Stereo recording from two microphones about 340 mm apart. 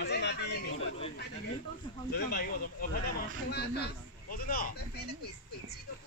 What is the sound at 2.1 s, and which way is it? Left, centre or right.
Speech, left.